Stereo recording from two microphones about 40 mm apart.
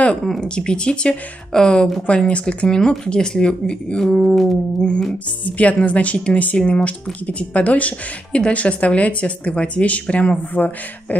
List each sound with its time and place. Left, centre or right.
0.4 s speech: left
4.0 s a sound: centre
5.4 s speech: left